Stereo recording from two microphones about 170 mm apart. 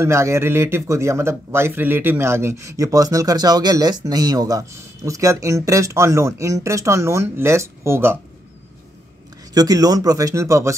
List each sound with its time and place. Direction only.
0.0 s speech: 15° right (ahead or behind)
9.5 s speech: 20° right (ahead or behind)